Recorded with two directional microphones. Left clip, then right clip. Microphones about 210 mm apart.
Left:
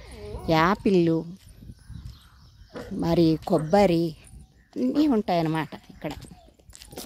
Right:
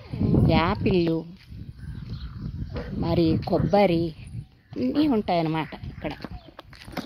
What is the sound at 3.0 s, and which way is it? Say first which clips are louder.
Speech: left 2 dB; 25° left (ahead or behind).